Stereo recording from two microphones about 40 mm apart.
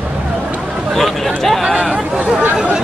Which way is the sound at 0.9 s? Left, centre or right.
Centre.